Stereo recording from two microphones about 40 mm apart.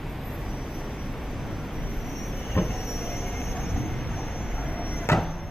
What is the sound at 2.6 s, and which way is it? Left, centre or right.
Train, left.